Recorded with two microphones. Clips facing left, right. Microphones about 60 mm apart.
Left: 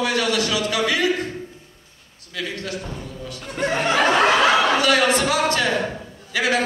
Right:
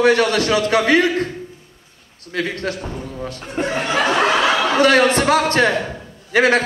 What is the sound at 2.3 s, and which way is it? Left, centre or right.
Speech, right.